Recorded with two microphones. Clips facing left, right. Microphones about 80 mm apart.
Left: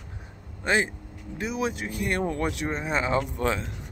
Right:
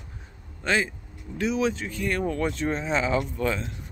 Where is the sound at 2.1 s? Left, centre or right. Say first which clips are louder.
Even; left.